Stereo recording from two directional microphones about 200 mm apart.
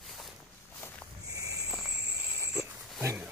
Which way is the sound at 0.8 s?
10° left (ahead or behind).